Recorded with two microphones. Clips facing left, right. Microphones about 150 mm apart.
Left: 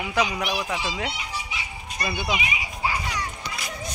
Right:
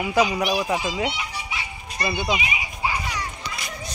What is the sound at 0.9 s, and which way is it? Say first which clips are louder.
Speech: right 4 dB; 10° right (ahead or behind).